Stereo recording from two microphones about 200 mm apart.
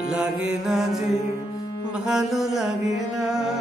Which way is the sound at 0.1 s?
Centre (ahead or behind).